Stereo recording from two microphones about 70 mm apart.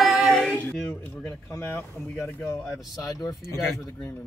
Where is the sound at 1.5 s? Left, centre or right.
Left.